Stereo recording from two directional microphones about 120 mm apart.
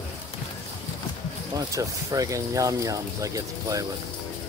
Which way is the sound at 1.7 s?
30° right (ahead or behind).